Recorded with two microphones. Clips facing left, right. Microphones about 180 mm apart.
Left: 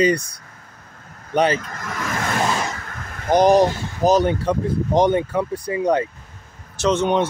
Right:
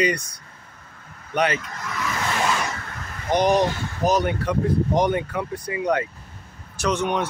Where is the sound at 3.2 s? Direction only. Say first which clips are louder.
Left 5 dB; 35° left (ahead or behind).